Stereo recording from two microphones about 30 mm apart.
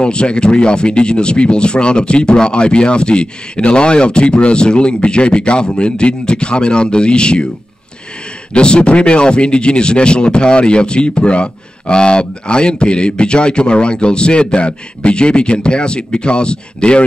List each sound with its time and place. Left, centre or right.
0.0 s speech: left
8.5 s speech: left